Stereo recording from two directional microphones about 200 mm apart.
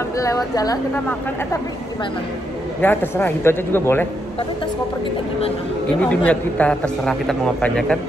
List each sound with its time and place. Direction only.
0.2 s speech: 15° left (ahead or behind)
2.8 s speech: 10° left (ahead or behind)
5.9 s a man's voice: 5° left (ahead or behind)